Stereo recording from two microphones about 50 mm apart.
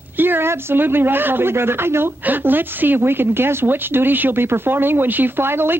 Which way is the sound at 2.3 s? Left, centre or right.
Right.